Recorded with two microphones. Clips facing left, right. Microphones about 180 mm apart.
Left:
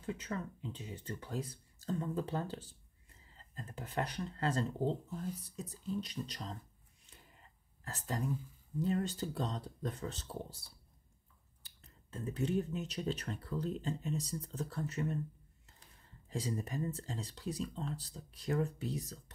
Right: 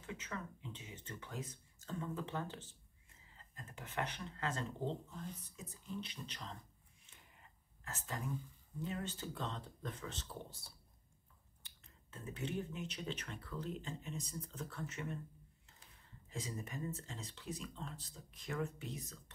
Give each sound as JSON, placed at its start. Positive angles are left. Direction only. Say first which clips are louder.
{"t": 0.0, "sound": "speech", "louder": "left 6 dB", "side_deg": 35}
{"t": 7.8, "sound": "speech", "louder": "left 6 dB", "side_deg": 35}
{"t": 11.6, "sound": "speech", "louder": "left 4 dB", "side_deg": 35}
{"t": 16.3, "sound": "speech", "louder": "left 7 dB", "side_deg": 35}